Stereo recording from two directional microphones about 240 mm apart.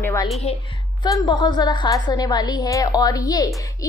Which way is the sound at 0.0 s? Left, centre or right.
Centre.